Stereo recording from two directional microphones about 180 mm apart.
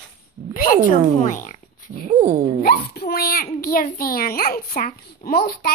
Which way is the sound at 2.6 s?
60° left (ahead or behind).